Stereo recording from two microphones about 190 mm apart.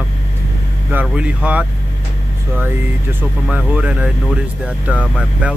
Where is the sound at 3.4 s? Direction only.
5° right (ahead or behind).